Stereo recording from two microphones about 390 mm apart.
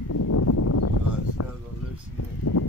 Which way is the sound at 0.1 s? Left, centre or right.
Left.